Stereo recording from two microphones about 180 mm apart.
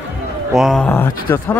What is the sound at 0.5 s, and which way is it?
Speech, centre (ahead or behind).